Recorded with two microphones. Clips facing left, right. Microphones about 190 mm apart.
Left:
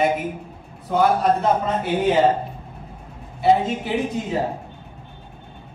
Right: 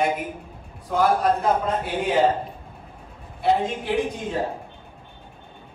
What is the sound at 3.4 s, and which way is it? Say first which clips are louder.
Speech: left 4 dB; 5° left (ahead or behind).